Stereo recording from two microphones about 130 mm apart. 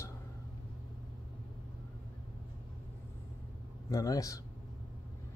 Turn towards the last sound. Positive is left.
turn(degrees=25)  # may be behind; listen again after turning